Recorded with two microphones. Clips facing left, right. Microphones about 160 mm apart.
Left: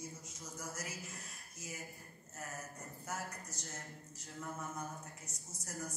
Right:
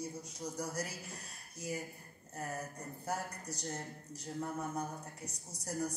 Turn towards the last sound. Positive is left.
turn(degrees=-35)  # may be behind; listen again after turning